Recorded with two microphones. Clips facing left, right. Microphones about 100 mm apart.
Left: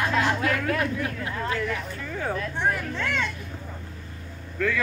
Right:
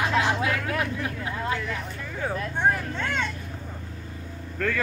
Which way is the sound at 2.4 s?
30° right (ahead or behind).